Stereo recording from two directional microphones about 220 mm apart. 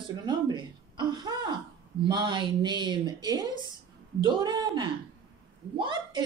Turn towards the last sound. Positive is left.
turn(degrees=-20)  # may be behind; listen again after turning